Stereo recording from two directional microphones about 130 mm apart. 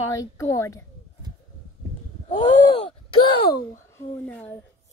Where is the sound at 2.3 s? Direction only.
35° left (ahead or behind).